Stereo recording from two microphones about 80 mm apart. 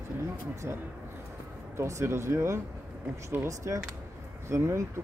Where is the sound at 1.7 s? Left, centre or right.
Right.